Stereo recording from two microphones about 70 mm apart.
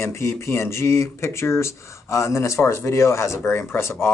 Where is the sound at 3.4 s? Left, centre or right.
Left.